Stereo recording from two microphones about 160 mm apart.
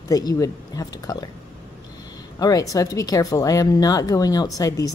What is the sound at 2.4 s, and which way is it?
Speech, 25° left (ahead or behind).